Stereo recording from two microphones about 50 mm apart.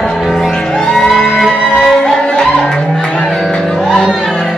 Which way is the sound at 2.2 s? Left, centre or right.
Centre.